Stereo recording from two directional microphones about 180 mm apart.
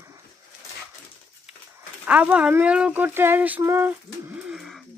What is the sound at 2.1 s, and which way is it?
Speech, 10° right (ahead or behind).